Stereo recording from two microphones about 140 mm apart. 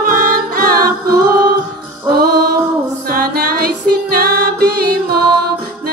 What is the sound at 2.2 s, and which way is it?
Music, 90° right.